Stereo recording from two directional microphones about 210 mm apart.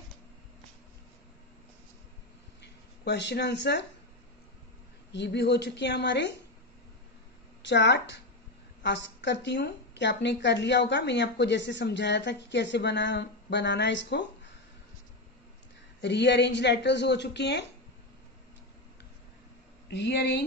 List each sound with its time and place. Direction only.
3.1 s a woman's voice: 55° left (ahead or behind)
5.1 s a woman's voice: 55° left (ahead or behind)
7.6 s a woman's voice: 55° left (ahead or behind)
16.0 s a woman's voice: 55° left (ahead or behind)
19.9 s a woman's voice: 55° left (ahead or behind)